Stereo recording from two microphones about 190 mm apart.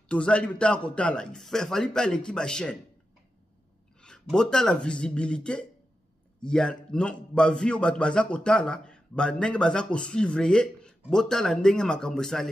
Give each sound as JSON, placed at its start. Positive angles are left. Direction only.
{"t": 0.1, "sound": "a man's voice", "side_deg": 5}
{"t": 4.0, "sound": "a man's voice", "side_deg": 5}